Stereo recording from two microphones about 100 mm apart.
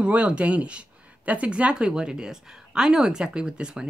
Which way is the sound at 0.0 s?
10° right (ahead or behind).